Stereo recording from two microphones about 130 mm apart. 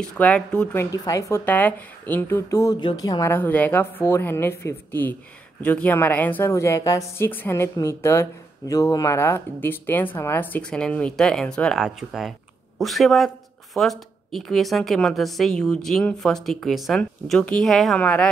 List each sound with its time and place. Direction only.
0.0 s speech: 5° left (ahead or behind)
0.7 s a woman's voice: 25° left (ahead or behind)
1.4 s speech: 15° left (ahead or behind)
2.8 s a woman's voice: 35° left (ahead or behind)
3.3 s a woman's voice: 15° left (ahead or behind)